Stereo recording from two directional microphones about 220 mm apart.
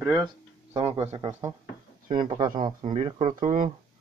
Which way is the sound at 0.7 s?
30° right (ahead or behind).